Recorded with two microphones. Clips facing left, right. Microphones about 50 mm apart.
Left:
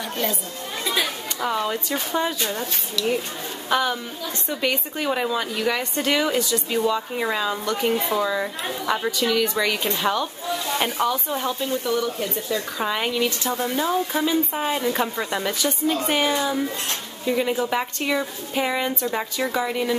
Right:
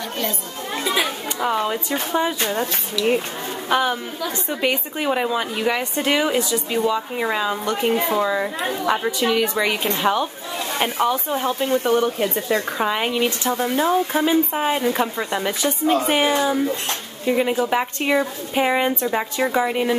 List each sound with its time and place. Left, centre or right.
0.8 s speech: centre
2.4 s speech: right
3.0 s a woman's voice: centre
10.8 s a woman's voice: centre
11.6 s speech: right
12.7 s a woman's voice: centre
15.6 s a woman's voice: right
16.1 s a woman's voice: centre